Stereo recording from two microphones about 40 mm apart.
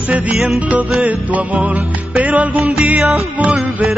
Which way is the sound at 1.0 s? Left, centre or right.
Right.